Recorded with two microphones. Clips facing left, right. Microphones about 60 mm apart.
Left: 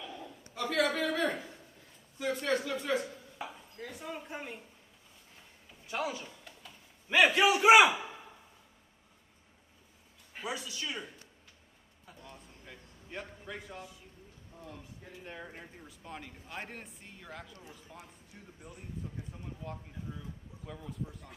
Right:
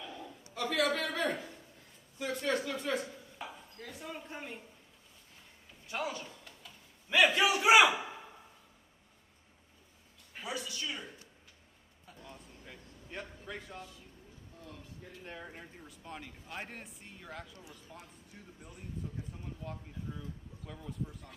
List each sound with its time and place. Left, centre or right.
0.0 s a sound: centre
0.6 s a man's voice: centre
3.3 s chopping: centre
5.9 s a sound: centre
10.3 s a man's voice: centre
12.2 s a sound: centre
13.5 s a man's voice: centre
14.6 s speech: centre
15.2 s a man's voice: centre